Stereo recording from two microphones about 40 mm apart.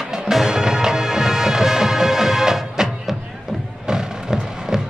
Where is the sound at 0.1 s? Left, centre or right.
Centre.